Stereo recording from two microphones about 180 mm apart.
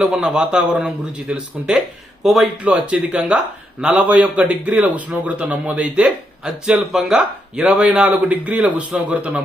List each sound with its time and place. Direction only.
0.0 s a man's voice: centre (ahead or behind)